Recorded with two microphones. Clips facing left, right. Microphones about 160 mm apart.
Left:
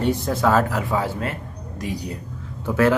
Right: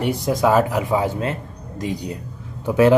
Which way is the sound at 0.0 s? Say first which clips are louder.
Right 1 dB; 15° right (ahead or behind).